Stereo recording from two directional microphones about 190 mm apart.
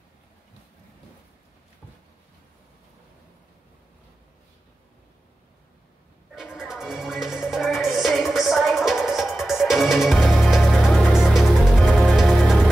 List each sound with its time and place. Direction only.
6.3 s music: 5° right (ahead or behind)